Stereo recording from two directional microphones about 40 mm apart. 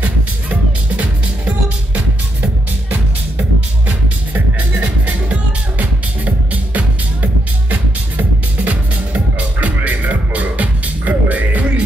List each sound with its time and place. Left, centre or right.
4.3 s music: right